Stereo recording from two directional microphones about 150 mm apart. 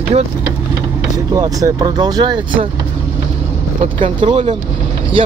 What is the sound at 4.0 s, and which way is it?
Speech, 35° right (ahead or behind).